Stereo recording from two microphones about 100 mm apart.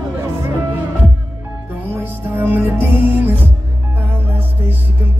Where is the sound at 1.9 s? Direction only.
20° right (ahead or behind).